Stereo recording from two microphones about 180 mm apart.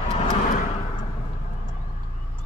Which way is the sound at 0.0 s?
35° left (ahead or behind).